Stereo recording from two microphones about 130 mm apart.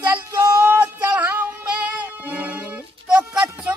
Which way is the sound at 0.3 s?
30° right (ahead or behind).